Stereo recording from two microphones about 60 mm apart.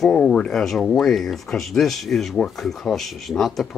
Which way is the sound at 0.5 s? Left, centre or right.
Centre.